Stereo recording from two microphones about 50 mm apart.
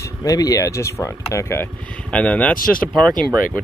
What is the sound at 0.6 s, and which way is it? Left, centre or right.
Speech, left.